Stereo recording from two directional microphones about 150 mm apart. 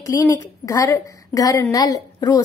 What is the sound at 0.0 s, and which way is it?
A woman's voice, 20° left (ahead or behind).